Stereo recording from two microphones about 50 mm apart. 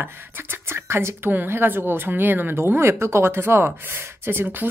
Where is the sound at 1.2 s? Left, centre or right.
Right.